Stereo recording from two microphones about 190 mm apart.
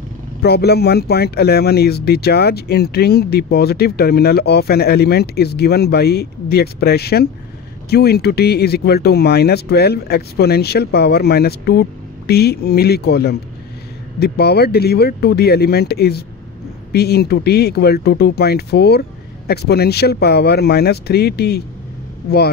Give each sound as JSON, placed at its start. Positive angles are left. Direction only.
{"t": 0.4, "sound": "speech", "side_deg": 55}